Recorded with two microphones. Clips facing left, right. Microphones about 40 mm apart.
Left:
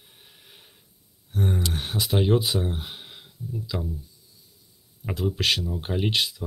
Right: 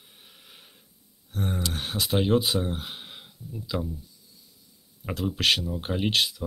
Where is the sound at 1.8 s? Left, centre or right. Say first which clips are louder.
Left 1 dB; centre.